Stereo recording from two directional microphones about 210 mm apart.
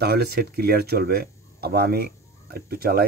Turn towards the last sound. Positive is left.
turn(degrees=-45)  # may be behind; listen again after turning